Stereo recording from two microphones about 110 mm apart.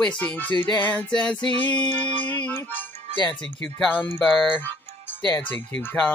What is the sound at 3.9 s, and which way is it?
Speech, 15° left (ahead or behind).